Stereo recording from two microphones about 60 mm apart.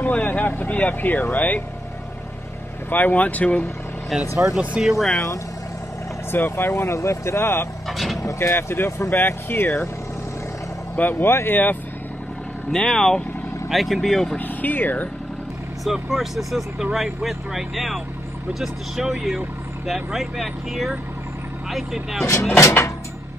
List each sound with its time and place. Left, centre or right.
0.0 s speech: left
2.9 s speech: left
4.1 s speech: centre
4.5 s speech: centre
4.9 s speech: centre
6.5 s speech: left
11.0 s speech: left
12.7 s speech: centre
13.7 s speech: centre
14.4 s speech: left
15.8 s speech: centre
22.6 s music: left